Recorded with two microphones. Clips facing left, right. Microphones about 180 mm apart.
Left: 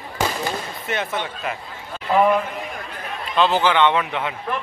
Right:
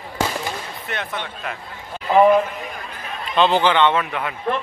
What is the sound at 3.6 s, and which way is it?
Speech, 10° left (ahead or behind).